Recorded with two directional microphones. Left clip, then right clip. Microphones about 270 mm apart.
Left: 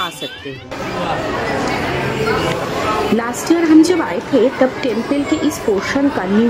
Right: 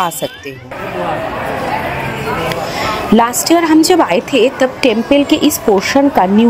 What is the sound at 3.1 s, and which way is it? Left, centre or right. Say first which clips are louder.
A woman's voice: right 6 dB; right.